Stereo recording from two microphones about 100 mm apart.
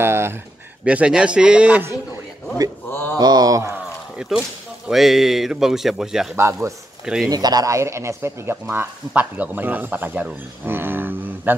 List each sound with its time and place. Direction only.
0.0 s speech: 25° right (ahead or behind)
0.8 s speech: 10° right (ahead or behind)
2.9 s mantra: 20° left (ahead or behind)
3.2 s a sound: 40° right (ahead or behind)
4.2 s speech: 5° right (ahead or behind)
6.3 s speech: 30° right (ahead or behind)
7.2 s speech: 40° right (ahead or behind); by 11.5 s 20° right (ahead or behind)